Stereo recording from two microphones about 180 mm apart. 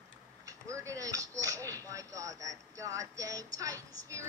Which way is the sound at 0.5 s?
15° right (ahead or behind).